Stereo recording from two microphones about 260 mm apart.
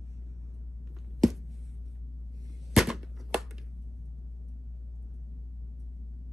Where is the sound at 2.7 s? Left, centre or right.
Centre.